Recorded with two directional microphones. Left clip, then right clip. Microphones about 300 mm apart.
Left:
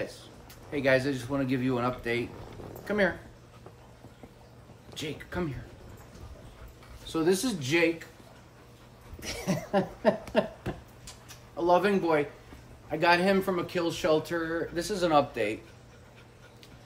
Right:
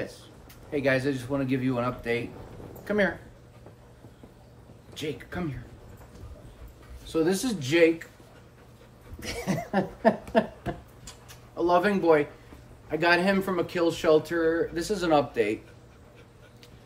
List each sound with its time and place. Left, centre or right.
0.7 s a man's voice: centre
4.9 s a man's voice: centre
7.1 s a man's voice: centre
9.2 s a sound: centre
12.9 s a man's voice: centre